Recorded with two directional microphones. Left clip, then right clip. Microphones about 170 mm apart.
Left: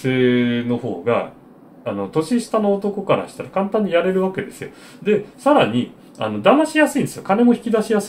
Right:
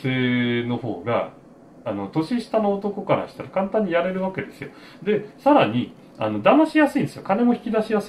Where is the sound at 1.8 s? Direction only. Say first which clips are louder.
Left 4 dB; 20° left (ahead or behind).